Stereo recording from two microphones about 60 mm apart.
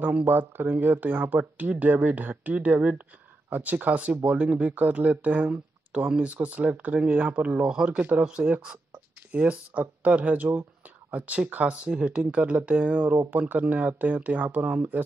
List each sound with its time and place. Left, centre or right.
0.0 s speech: right
0.3 s speech: right